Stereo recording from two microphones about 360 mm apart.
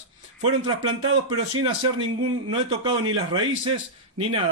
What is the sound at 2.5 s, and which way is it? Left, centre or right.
Speech, centre.